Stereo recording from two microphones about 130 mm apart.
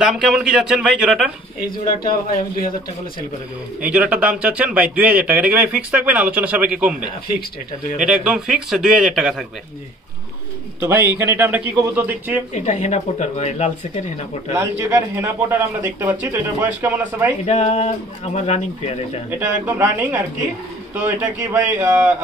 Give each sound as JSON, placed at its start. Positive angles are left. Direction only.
{"t": 0.0, "sound": "speech", "side_deg": -5}
{"t": 2.0, "sound": "speech", "side_deg": 90}
{"t": 3.8, "sound": "a man's voice", "side_deg": -10}
{"t": 10.8, "sound": "a man's voice", "side_deg": -15}
{"t": 12.5, "sound": "speech", "side_deg": 60}
{"t": 14.5, "sound": "a man's voice", "side_deg": -20}
{"t": 17.5, "sound": "speech", "side_deg": 55}
{"t": 19.3, "sound": "a man's voice", "side_deg": -15}
{"t": 21.4, "sound": "a man's voice", "side_deg": -20}